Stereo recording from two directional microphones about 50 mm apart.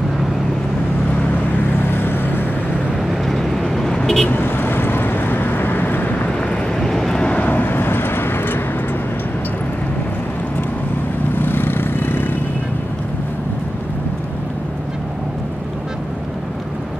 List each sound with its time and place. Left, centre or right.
1.9 s vehicle: left
3.0 s vehicle: centre
4.3 s vehicle: left
6.8 s vehicle: centre
7.2 s vehicle: left
7.4 s vehicle: left
11.3 s vehicle: left